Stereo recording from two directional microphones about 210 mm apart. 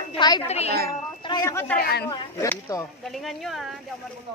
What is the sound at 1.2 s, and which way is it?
Speech, 15° left (ahead or behind).